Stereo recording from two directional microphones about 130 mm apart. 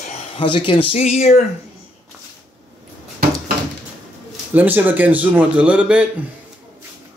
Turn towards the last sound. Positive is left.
turn(degrees=-10)  # may be behind; listen again after turning